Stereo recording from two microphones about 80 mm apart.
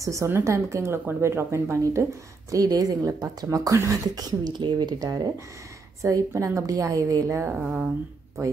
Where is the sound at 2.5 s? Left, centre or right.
Right.